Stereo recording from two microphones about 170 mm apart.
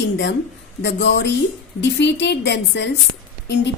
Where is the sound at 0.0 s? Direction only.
90° left.